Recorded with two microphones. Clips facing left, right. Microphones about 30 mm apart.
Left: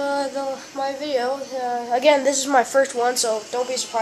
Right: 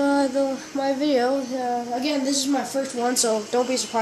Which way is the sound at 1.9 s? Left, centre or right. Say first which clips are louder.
Left 6 dB; left.